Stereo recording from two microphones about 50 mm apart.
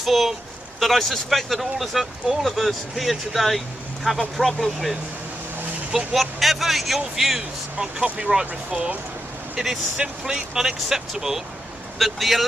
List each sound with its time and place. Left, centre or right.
0.0 s speech: centre
5.9 s speech: centre
7.7 s speech: right
9.6 s speech: centre